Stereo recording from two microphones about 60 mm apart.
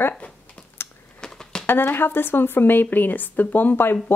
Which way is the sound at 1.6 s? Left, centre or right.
Left.